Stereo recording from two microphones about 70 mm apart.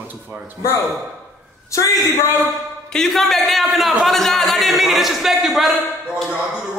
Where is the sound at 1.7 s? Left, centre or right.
Left.